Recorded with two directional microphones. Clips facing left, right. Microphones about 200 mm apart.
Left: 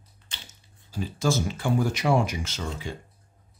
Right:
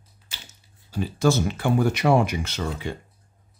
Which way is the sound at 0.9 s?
65° right (ahead or behind).